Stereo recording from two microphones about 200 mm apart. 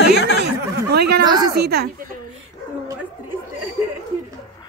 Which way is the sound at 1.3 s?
20° right (ahead or behind).